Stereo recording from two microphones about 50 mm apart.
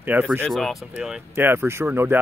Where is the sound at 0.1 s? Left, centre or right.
Right.